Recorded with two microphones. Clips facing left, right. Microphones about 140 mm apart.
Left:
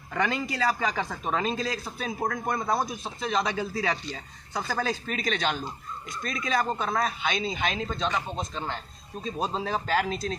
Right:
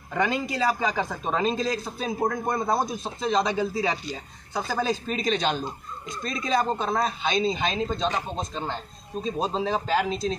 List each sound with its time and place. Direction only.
0.1 s a man's voice: 15° right (ahead or behind)
9.2 s a man's voice: 25° right (ahead or behind)